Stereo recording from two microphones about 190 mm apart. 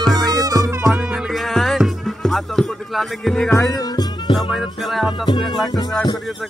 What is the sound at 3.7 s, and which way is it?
Music, 20° left (ahead or behind).